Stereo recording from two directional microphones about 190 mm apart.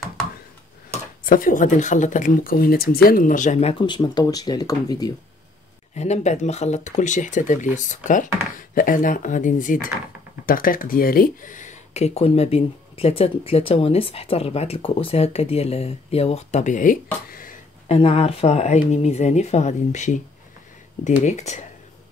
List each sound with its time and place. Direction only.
1.2 s speech: 45° left (ahead or behind)
3.8 s speech: 20° left (ahead or behind)
5.9 s speech: 35° left (ahead or behind)
17.8 s speech: 35° left (ahead or behind)
21.2 s speech: 40° left (ahead or behind)